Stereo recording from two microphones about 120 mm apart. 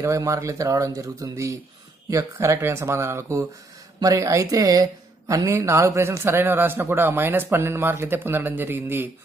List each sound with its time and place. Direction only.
0.0 s speech: 25° right (ahead or behind)